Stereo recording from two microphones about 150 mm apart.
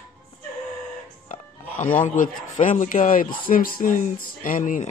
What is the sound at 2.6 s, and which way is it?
Speech, 55° left (ahead or behind).